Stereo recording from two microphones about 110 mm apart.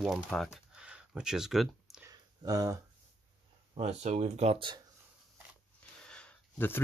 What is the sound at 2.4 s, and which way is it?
Speech, 35° right (ahead or behind).